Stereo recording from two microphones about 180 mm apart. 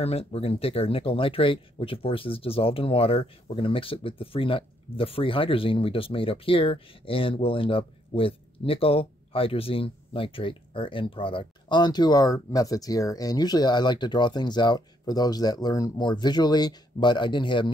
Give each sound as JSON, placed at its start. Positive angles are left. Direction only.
{"t": 0.0, "sound": "speech", "side_deg": 35}